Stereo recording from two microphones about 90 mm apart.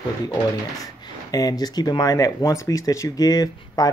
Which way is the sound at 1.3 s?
45° left (ahead or behind).